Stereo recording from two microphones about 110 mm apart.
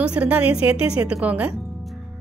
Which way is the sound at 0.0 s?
10° right (ahead or behind).